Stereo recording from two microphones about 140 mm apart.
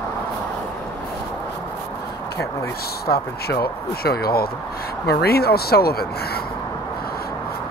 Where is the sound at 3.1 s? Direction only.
90° left.